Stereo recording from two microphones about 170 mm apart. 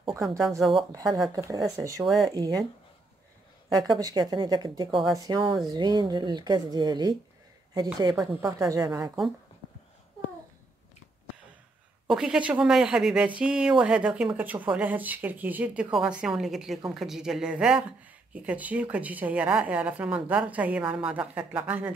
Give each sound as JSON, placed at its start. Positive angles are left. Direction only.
{"t": 0.6, "sound": "speech", "side_deg": 0}
{"t": 0.9, "sound": "a woman's voice", "side_deg": -20}
{"t": 2.0, "sound": "speech", "side_deg": 0}
{"t": 2.3, "sound": "a woman's voice", "side_deg": -20}
{"t": 3.6, "sound": "a woman's voice", "side_deg": -20}
{"t": 9.0, "sound": "speech", "side_deg": 0}
{"t": 12.1, "sound": "speech", "side_deg": -5}